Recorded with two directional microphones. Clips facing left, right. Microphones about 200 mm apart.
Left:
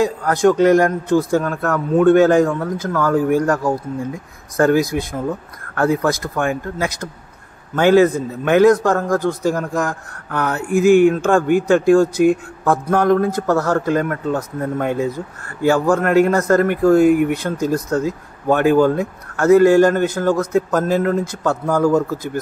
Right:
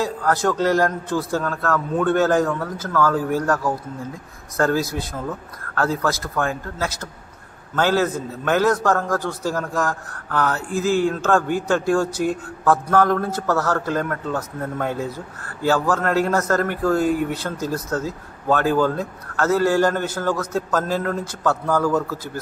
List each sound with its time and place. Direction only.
0.0 s a man's voice: 15° left (ahead or behind)
17.0 s speech: 60° left (ahead or behind)
17.3 s a man's voice: 15° left (ahead or behind)